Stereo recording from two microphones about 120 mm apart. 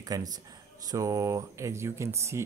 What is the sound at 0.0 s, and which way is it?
A man's voice, 30° right (ahead or behind).